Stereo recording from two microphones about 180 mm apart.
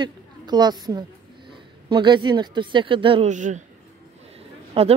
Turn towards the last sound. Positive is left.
turn(degrees=-35)  # may be behind; listen again after turning